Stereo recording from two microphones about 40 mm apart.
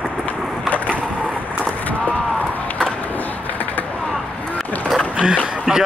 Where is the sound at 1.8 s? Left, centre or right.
Left.